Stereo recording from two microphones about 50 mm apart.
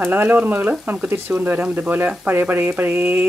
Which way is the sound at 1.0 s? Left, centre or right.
Right.